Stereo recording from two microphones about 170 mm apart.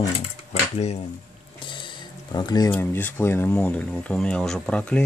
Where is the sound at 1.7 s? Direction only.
30° left (ahead or behind).